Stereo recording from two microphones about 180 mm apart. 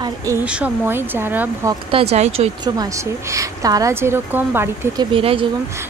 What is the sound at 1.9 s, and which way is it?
Speech, 35° right (ahead or behind).